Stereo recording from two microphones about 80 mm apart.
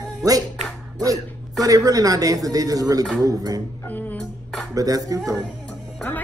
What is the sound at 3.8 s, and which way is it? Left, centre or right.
Music, left.